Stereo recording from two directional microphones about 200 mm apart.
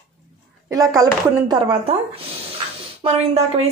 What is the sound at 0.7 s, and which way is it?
Speech, 15° right (ahead or behind).